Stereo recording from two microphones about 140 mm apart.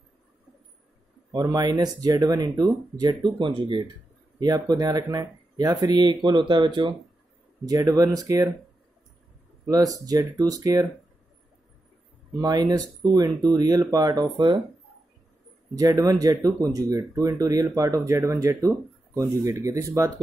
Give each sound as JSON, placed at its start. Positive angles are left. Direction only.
{"t": 1.3, "sound": "speech", "side_deg": -30}
{"t": 9.9, "sound": "speech", "side_deg": -25}
{"t": 12.4, "sound": "speech", "side_deg": -30}
{"t": 15.7, "sound": "speech", "side_deg": -25}